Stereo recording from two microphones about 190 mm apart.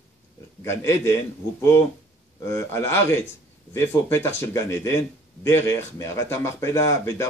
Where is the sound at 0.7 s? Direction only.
15° left (ahead or behind).